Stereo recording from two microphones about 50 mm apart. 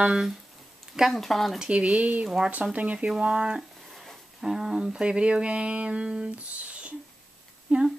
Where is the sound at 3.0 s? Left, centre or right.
Centre.